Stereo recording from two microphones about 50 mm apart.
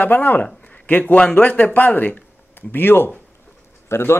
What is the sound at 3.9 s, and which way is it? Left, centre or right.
Speech, left.